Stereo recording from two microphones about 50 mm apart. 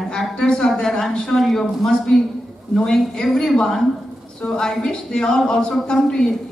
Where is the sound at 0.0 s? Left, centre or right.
Centre.